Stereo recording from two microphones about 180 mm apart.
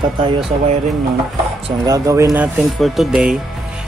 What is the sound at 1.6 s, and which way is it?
Speech, 20° right (ahead or behind).